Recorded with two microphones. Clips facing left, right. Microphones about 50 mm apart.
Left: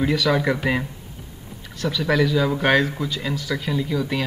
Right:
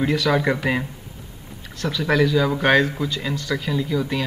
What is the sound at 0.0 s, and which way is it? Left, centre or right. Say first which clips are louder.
Speech: even; centre.